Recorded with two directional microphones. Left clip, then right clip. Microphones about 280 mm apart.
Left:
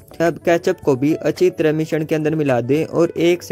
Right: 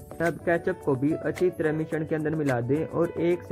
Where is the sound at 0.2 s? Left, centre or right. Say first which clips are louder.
Left 9 dB; left.